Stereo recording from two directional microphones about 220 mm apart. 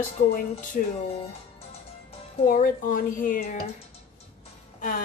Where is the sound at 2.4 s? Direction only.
40° left (ahead or behind).